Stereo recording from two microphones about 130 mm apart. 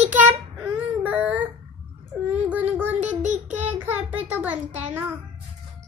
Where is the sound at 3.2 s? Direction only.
65° right (ahead or behind).